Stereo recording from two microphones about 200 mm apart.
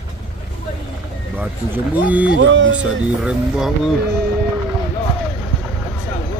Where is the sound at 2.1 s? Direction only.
5° right (ahead or behind).